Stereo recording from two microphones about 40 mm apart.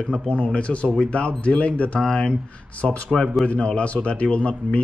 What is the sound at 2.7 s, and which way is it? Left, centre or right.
Speech, left.